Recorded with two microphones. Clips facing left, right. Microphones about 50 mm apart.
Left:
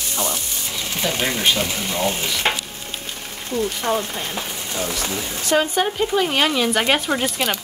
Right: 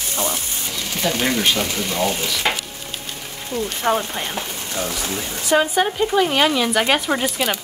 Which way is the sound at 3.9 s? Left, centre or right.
Right.